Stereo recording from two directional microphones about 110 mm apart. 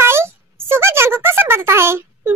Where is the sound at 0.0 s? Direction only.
25° right (ahead or behind).